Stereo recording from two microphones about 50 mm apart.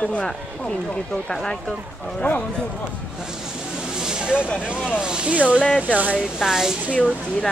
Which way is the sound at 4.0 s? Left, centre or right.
Centre.